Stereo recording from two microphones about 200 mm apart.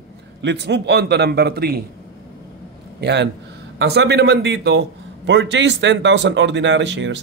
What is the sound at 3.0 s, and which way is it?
A man's voice, 60° right (ahead or behind).